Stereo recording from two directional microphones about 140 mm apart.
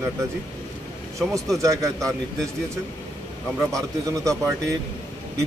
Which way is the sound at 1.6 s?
20° right (ahead or behind).